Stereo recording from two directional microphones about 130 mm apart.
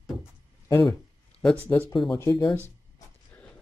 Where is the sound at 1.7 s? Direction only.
20° left (ahead or behind).